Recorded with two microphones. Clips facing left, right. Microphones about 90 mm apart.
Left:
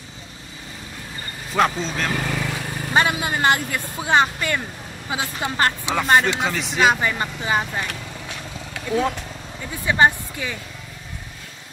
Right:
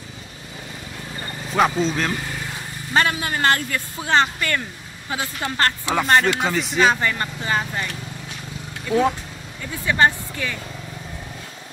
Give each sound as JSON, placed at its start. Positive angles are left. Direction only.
{"t": 1.5, "sound": "speech", "side_deg": 0}
{"t": 2.1, "sound": "vehicle", "side_deg": 90}
{"t": 2.9, "sound": "speech", "side_deg": 15}
{"t": 5.9, "sound": "speech", "side_deg": 0}
{"t": 6.8, "sound": "speech", "side_deg": 15}
{"t": 9.8, "sound": "speech", "side_deg": 15}